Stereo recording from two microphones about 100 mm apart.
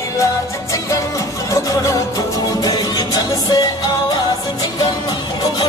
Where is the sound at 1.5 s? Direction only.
30° left (ahead or behind).